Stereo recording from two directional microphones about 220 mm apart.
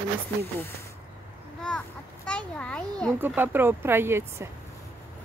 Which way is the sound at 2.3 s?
5° left (ahead or behind).